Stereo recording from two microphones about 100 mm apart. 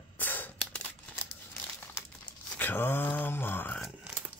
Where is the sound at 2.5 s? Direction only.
20° left (ahead or behind).